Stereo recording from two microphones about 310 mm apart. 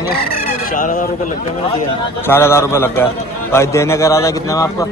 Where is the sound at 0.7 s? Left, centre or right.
Left.